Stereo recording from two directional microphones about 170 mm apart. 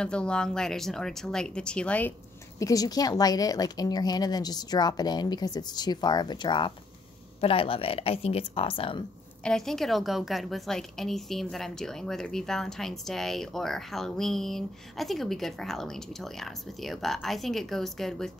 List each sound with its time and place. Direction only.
0.0 s a woman's voice: 5° left (ahead or behind)
2.6 s a woman's voice: 20° left (ahead or behind)
9.4 s a woman's voice: 5° left (ahead or behind)